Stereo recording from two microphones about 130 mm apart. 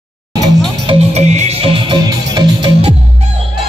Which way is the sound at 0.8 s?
55° right (ahead or behind).